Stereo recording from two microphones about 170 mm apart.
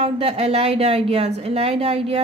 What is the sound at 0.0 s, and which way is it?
A woman's voice, 35° right (ahead or behind).